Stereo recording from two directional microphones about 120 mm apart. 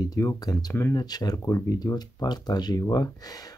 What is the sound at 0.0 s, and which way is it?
Speech, 30° left (ahead or behind).